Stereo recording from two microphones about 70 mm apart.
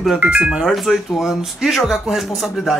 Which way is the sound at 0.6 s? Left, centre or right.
Centre.